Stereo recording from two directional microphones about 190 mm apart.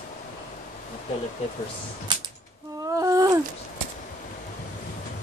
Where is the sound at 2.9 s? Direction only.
15° right (ahead or behind).